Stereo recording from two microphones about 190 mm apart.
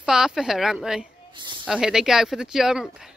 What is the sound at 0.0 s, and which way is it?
Speech, 5° right (ahead or behind).